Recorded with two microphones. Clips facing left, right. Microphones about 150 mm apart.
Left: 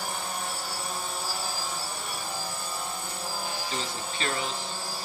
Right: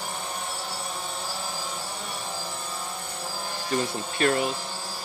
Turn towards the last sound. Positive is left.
turn(degrees=-55)  # may be behind; listen again after turning